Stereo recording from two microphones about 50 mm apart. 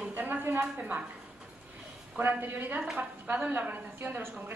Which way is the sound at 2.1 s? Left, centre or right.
Right.